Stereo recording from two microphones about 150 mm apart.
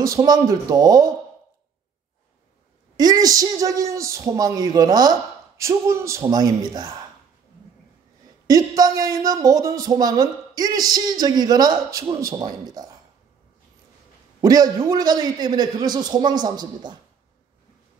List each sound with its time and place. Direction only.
0.0 s speech: 25° right (ahead or behind)
3.0 s speech: 25° right (ahead or behind)
8.5 s speech: 25° right (ahead or behind)
14.4 s a man's voice: 25° right (ahead or behind)